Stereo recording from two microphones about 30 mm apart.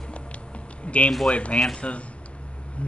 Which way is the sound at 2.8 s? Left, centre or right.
Left.